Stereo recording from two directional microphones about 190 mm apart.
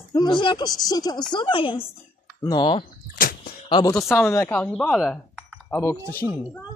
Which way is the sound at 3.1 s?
50° left (ahead or behind).